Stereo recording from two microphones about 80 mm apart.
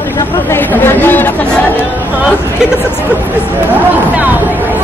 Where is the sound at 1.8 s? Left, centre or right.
Right.